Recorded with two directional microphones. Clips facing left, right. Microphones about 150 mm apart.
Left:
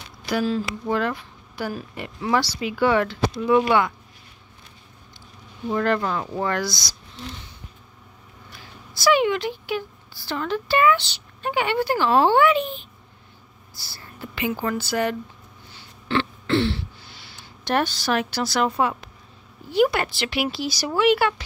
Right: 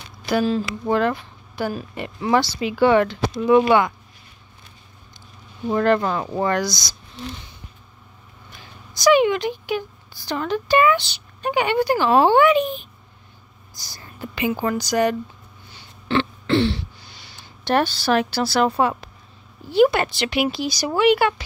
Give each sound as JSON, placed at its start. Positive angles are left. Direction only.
{"t": 0.3, "sound": "speech", "side_deg": -25}
{"t": 5.7, "sound": "speech", "side_deg": -30}
{"t": 8.5, "sound": "a woman's voice", "side_deg": -20}
{"t": 15.7, "sound": "throat clearing", "side_deg": -20}
{"t": 17.6, "sound": "a woman's voice", "side_deg": -30}